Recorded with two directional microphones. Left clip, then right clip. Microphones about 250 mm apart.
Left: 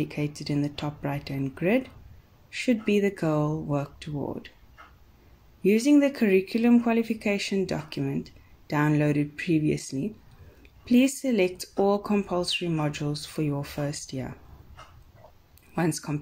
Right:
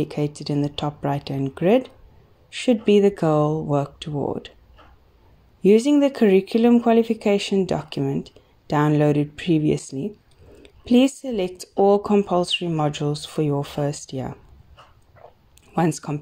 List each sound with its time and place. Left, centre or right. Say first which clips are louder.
0.0 s speech: right 6 dB; right
5.6 s speech: right 5 dB; right
15.7 s speech: right 6 dB; right